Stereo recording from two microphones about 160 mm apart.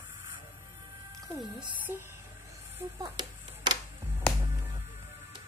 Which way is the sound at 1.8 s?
15° right (ahead or behind).